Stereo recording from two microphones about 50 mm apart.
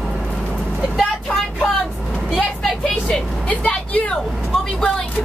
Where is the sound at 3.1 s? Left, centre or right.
Centre.